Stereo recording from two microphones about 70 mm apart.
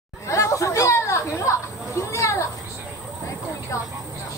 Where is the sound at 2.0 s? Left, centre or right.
Left.